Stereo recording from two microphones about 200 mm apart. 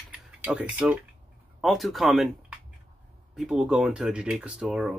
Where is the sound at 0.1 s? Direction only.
5° right (ahead or behind).